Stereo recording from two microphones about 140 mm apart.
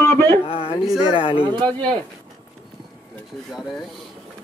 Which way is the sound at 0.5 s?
40° left (ahead or behind).